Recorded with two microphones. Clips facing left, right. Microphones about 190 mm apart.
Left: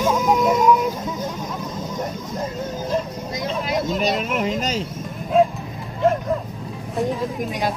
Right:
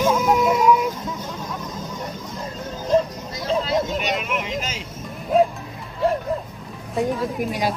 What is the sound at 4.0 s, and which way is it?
Speech, 40° left (ahead or behind).